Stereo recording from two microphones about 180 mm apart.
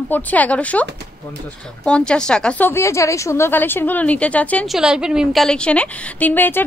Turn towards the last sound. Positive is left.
turn(degrees=10)  # may be behind; listen again after turning